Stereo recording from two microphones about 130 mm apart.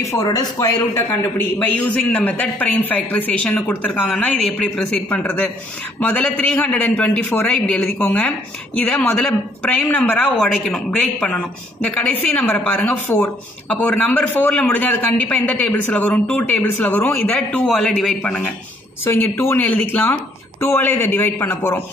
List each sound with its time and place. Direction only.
0.0 s speech: 25° left (ahead or behind)
1.8 s a man's voice: 10° left (ahead or behind)
5.2 s a man's voice: 15° left (ahead or behind)
19.0 s a man's voice: 15° left (ahead or behind)